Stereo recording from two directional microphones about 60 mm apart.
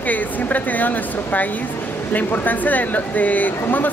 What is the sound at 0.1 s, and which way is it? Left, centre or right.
Speech, left.